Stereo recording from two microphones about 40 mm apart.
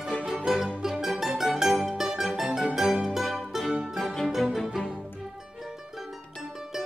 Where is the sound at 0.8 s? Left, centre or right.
Centre.